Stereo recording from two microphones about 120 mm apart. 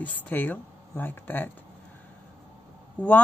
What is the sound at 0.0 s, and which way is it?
Speech, 15° left (ahead or behind).